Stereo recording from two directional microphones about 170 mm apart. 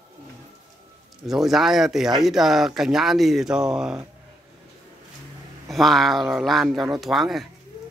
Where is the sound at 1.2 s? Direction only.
Centre (ahead or behind).